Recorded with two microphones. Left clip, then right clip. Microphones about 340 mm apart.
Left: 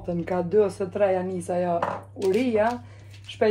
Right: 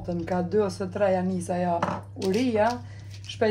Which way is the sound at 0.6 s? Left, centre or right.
Left.